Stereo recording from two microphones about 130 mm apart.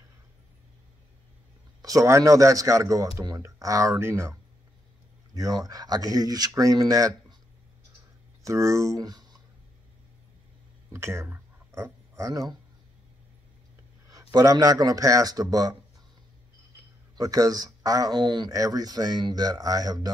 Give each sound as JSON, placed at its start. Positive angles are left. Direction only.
{"t": 1.8, "sound": "speech", "side_deg": -25}
{"t": 8.5, "sound": "speech", "side_deg": -25}
{"t": 10.9, "sound": "speech", "side_deg": -20}
{"t": 14.1, "sound": "speech", "side_deg": -30}
{"t": 17.2, "sound": "speech", "side_deg": -30}